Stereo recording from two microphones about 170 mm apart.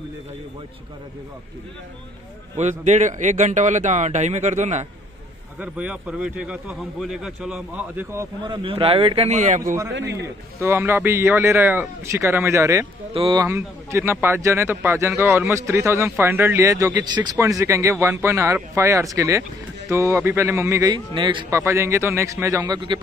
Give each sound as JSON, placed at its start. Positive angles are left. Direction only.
{"t": 2.5, "sound": "a man's voice", "side_deg": -45}
{"t": 5.6, "sound": "speech", "side_deg": -5}
{"t": 8.5, "sound": "a man's voice", "side_deg": -30}
{"t": 9.9, "sound": "a man's voice", "side_deg": -90}
{"t": 10.2, "sound": "speech", "side_deg": -15}
{"t": 13.1, "sound": "a man's voice", "side_deg": -35}
{"t": 13.4, "sound": "speech", "side_deg": -15}
{"t": 21.5, "sound": "speech", "side_deg": -15}